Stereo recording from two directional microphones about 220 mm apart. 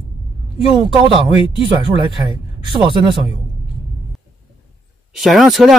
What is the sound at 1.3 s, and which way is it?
Speech, 25° left (ahead or behind).